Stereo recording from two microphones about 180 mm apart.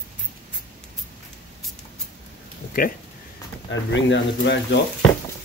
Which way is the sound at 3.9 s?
85° left.